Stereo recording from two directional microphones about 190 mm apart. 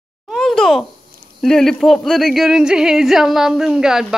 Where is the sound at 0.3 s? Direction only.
Centre (ahead or behind).